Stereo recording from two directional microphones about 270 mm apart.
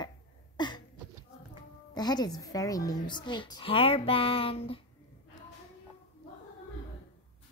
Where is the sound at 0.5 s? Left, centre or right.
Centre.